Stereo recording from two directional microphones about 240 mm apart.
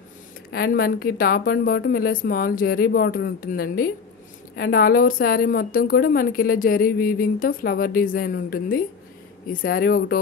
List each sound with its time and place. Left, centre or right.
0.5 s a woman's voice: left